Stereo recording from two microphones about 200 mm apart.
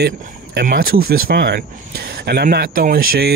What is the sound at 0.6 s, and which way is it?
Speech, 50° right (ahead or behind).